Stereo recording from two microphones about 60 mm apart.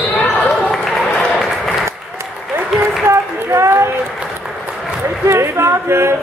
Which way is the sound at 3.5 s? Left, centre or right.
Right.